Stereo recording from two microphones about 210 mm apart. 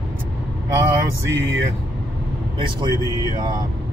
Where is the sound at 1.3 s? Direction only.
65° right (ahead or behind).